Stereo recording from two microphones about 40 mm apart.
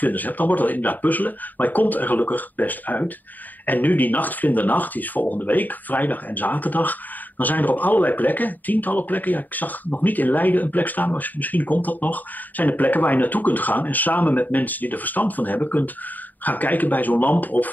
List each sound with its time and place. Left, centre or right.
0.0 s speech: left